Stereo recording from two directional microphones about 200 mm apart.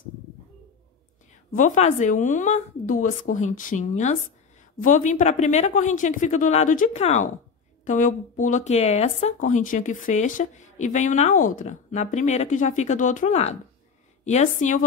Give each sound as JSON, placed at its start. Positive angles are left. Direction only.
{"t": 1.5, "sound": "speech", "side_deg": 35}